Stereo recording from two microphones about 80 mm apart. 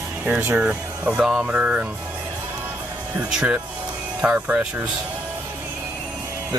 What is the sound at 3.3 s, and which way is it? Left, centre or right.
Speech, centre.